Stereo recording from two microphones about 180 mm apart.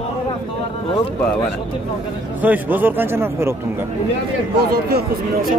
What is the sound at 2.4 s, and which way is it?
A man's voice, 10° right (ahead or behind).